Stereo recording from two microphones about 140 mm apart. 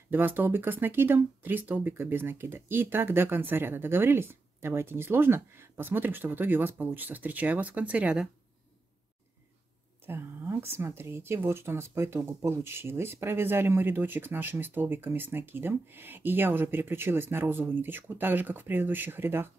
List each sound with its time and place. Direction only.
0.1 s speech: 15° right (ahead or behind)
10.0 s speech: 15° right (ahead or behind)